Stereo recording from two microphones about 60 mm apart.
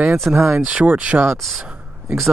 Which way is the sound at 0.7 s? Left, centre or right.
Right.